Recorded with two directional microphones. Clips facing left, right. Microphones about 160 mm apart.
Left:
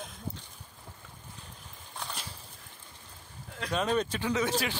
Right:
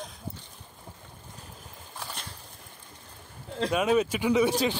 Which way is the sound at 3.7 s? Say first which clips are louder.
Right 4 dB; 10° right (ahead or behind).